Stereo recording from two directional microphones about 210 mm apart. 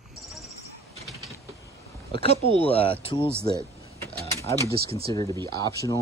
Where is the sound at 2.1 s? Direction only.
30° left (ahead or behind).